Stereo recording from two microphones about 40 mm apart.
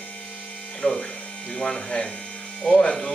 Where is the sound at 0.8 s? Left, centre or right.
Left.